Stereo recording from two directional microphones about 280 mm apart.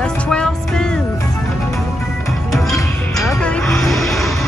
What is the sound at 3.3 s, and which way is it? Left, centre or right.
Music, centre.